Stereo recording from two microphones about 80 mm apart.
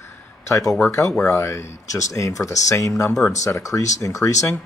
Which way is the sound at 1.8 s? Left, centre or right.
Left.